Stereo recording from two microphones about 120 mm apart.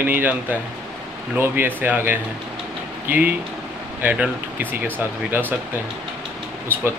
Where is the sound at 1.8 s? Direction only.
15° right (ahead or behind).